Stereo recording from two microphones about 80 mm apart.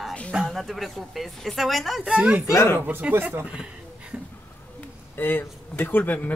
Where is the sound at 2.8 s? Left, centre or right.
Right.